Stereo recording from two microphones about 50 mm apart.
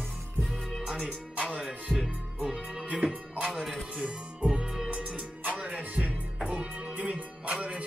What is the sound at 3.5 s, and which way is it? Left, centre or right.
Music, centre.